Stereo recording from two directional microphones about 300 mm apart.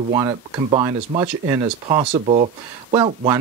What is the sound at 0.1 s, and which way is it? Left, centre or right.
Speech, centre.